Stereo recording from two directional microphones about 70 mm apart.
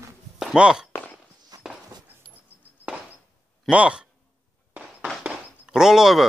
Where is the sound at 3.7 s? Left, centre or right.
Centre.